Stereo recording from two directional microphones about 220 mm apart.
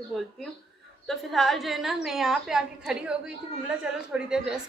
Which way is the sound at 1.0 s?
Centre (ahead or behind).